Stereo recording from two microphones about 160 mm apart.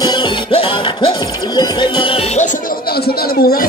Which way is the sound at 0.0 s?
35° left (ahead or behind).